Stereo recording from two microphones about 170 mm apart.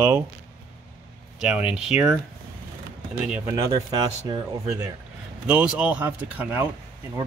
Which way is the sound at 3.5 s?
20° right (ahead or behind).